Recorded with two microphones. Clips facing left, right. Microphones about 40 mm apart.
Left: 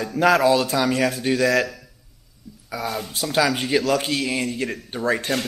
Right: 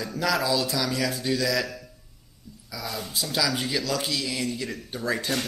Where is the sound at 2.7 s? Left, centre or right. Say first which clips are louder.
Left 6 dB; left.